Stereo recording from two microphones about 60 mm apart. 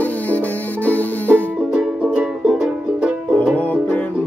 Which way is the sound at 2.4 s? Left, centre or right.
Centre.